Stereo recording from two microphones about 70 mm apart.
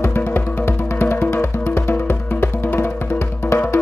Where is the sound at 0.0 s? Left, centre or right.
Left.